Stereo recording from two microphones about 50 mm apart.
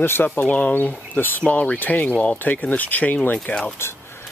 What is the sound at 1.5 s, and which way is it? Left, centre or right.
Speech, left.